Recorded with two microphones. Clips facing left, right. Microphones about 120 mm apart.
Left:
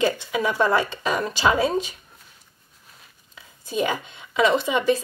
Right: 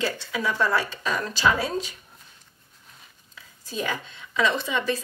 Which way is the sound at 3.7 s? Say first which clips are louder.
Left 5 dB; 15° left (ahead or behind).